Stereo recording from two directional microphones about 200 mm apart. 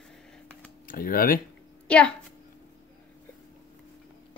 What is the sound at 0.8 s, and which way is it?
Speech, 45° left (ahead or behind).